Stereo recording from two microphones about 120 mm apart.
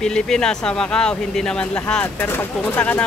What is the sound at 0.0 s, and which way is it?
Speech, 5° left (ahead or behind).